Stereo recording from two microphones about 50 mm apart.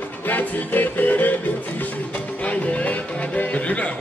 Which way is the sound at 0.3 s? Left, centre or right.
Left.